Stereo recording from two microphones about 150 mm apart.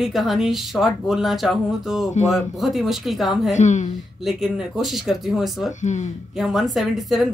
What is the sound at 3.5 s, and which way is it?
Speech, 50° left (ahead or behind).